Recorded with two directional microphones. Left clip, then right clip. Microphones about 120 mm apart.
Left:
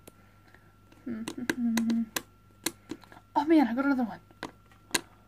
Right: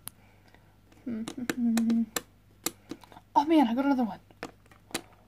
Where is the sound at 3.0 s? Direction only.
25° right (ahead or behind).